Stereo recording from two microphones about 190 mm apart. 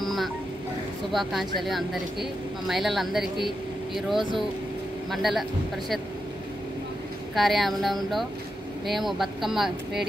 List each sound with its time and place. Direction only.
0.0 s a sound: centre (ahead or behind)
1.1 s speech: centre (ahead or behind)
7.3 s speech: centre (ahead or behind)